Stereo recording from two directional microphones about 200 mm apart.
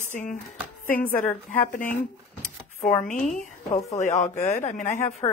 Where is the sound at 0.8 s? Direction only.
10° left (ahead or behind).